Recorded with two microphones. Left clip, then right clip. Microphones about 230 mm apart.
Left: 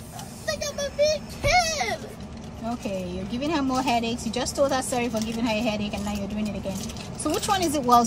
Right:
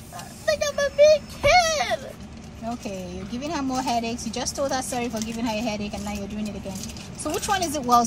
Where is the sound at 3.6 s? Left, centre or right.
Left.